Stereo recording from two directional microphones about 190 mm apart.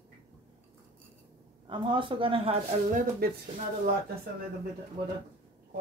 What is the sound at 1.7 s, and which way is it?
A woman's voice, 25° right (ahead or behind).